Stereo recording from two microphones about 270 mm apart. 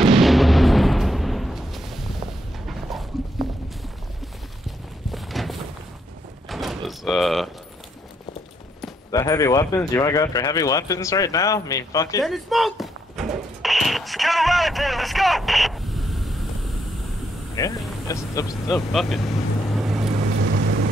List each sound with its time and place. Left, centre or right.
0.1 s artillery fire: centre
2.6 s a sound: centre
4.6 s clip-clop: centre
6.5 s a sound: centre
9.1 s speech: centre
12.2 s a sound: centre
17.6 s speech: centre
18.9 s speech: centre
19.7 s boat: centre
20.3 s vehicle: right